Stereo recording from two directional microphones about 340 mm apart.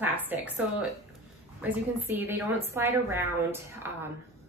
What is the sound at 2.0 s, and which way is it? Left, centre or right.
A woman's voice, centre.